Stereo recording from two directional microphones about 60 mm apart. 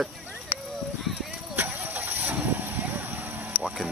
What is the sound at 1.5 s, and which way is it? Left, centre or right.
Vehicle, right.